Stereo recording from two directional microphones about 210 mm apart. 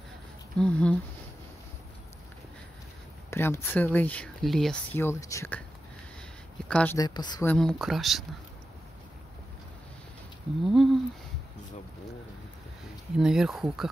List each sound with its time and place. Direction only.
0.6 s speech: 5° left (ahead or behind)
3.3 s speech: 10° left (ahead or behind)
6.7 s speech: 5° left (ahead or behind)
7.0 s a woman's voice: 20° left (ahead or behind)
7.4 s speech: centre (ahead or behind)
10.6 s speech: centre (ahead or behind)
13.2 s speech: centre (ahead or behind)